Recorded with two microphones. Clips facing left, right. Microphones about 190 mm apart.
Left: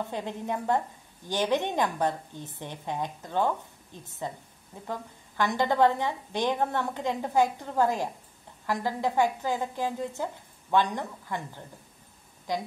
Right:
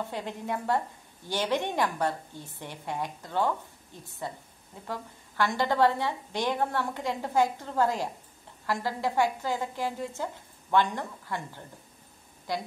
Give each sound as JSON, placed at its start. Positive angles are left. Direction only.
{"t": 0.1, "sound": "a woman's voice", "side_deg": 15}